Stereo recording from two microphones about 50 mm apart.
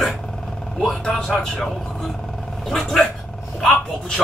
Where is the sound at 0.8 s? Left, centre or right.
Centre.